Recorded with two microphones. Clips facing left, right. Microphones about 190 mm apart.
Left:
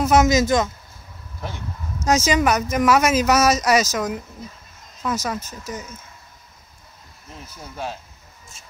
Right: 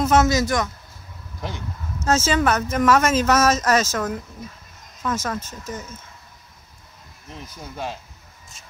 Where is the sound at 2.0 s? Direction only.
15° left (ahead or behind).